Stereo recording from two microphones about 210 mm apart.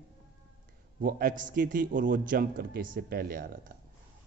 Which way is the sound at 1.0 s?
40° right (ahead or behind).